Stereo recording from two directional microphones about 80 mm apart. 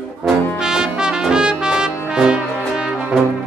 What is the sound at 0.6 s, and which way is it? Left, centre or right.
Brass instrument, centre.